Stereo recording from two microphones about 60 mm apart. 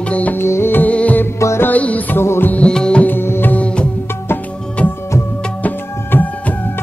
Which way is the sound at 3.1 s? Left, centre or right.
Left.